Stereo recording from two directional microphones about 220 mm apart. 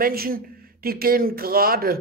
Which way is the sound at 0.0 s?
40° right (ahead or behind).